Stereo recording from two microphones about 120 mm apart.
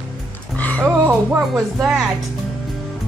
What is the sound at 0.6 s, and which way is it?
Music, 10° left (ahead or behind).